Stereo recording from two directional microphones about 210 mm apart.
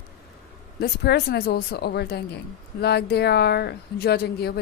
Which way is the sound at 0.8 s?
50° left (ahead or behind).